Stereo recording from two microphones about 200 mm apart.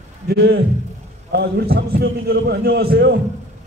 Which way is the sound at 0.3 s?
55° right (ahead or behind).